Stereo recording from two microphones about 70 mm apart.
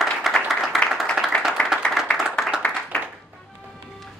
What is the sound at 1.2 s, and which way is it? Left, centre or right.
Clapping, centre.